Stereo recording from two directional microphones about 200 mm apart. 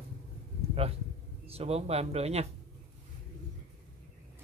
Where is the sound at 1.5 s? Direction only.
30° right (ahead or behind).